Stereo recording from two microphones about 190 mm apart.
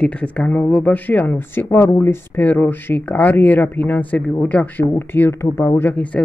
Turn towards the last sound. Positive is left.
turn(degrees=5)  # may be behind; listen again after turning